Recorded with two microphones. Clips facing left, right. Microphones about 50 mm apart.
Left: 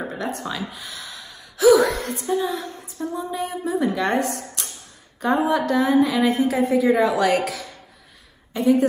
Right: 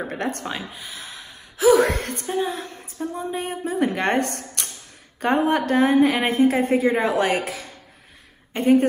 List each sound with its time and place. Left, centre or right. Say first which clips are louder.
0.1 s speech: right 1 dB; right
0.5 s gasp: left 1 dB; right
1.9 s a woman's voice: left 2 dB; right